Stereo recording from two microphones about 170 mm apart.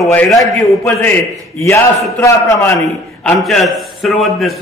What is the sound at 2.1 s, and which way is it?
Speech, 15° left (ahead or behind).